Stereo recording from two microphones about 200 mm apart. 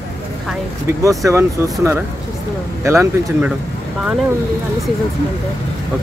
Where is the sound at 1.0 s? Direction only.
15° right (ahead or behind).